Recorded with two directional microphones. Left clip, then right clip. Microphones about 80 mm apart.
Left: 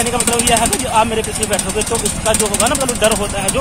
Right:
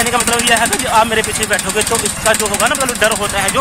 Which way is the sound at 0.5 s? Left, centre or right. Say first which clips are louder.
Right 2 dB; right.